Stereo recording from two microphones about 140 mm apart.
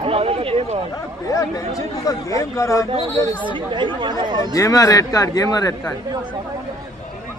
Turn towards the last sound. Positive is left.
turn(degrees=25)  # may be behind; listen again after turning